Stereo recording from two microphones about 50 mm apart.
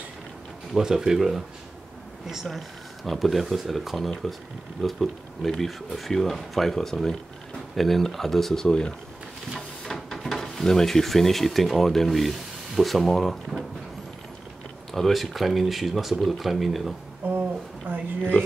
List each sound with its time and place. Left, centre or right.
0.7 s speech: centre
2.4 s speech: centre
14.9 s speech: centre
17.8 s a sound: right